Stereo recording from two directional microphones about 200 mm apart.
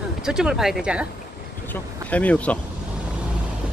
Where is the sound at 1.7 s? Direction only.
5° left (ahead or behind).